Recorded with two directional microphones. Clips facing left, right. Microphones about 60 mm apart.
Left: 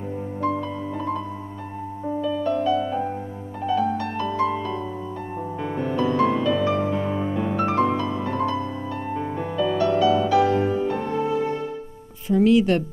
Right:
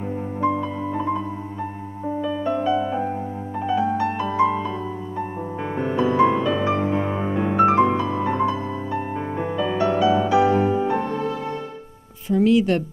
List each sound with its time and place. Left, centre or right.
0.4 s piano: right
2.2 s music: right